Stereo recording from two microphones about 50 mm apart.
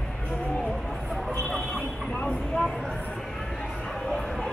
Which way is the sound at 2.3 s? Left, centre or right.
Centre.